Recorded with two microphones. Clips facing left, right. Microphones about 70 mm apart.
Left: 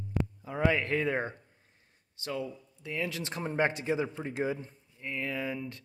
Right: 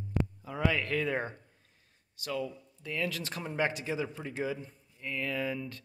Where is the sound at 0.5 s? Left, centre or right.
Left.